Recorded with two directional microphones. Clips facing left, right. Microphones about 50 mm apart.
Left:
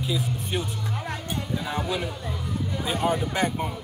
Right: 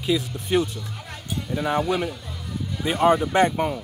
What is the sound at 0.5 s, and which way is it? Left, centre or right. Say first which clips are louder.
Speech: right 10 dB; right.